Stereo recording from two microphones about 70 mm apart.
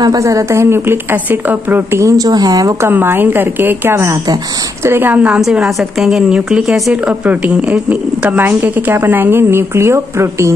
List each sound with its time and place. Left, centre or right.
0.2 s a woman's voice: right
2.0 s a woman's voice: right
2.8 s a woman's voice: right